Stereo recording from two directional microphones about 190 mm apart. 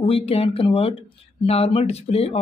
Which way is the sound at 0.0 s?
30° left (ahead or behind).